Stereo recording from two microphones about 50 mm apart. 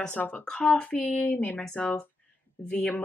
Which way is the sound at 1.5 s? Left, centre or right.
Centre.